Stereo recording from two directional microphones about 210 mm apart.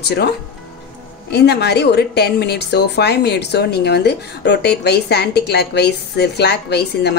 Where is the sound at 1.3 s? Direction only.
50° left (ahead or behind).